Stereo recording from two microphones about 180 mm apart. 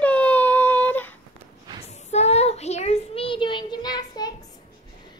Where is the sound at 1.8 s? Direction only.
35° left (ahead or behind).